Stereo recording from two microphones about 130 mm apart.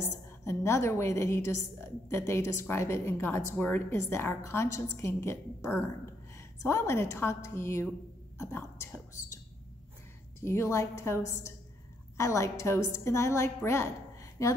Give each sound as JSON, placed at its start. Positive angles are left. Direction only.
{"t": 0.5, "sound": "a woman's voice", "side_deg": 20}
{"t": 10.4, "sound": "a woman's voice", "side_deg": 20}